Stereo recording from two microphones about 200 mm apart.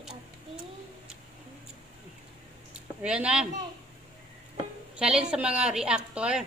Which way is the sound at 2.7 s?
5° right (ahead or behind).